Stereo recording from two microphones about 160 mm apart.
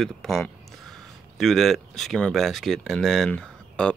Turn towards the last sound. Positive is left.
turn(degrees=5)  # may be behind; listen again after turning